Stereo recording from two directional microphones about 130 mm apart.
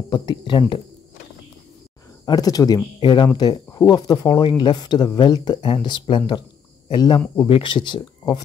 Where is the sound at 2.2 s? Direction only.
30° left (ahead or behind).